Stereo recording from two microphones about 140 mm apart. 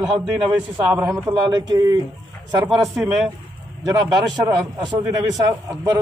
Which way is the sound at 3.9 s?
25° right (ahead or behind).